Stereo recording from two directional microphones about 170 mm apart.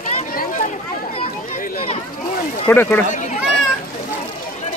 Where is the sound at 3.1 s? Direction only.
45° left (ahead or behind).